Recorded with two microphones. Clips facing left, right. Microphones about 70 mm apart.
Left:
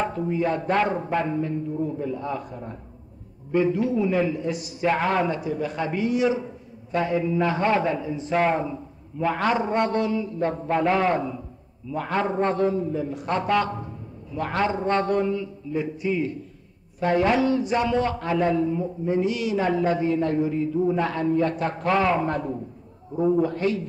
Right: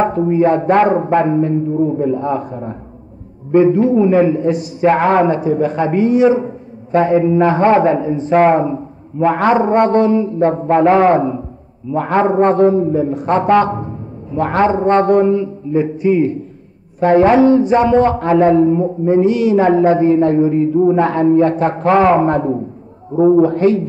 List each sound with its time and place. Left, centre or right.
0.0 s a man's voice: right